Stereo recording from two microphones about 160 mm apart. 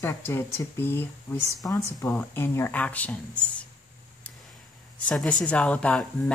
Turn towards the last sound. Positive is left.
turn(degrees=10)  # may be behind; listen again after turning